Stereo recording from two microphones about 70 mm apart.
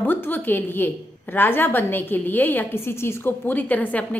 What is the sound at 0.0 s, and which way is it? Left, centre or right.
A woman's voice, left.